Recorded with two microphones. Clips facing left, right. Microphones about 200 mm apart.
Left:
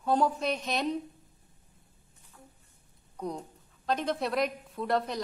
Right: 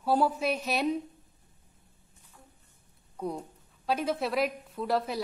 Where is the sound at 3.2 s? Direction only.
5° right (ahead or behind).